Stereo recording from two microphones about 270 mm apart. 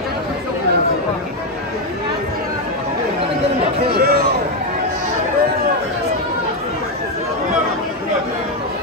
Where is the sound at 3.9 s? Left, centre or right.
Right.